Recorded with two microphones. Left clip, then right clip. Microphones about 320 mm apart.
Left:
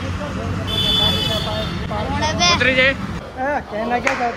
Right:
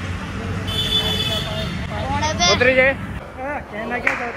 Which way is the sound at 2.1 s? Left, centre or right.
Centre.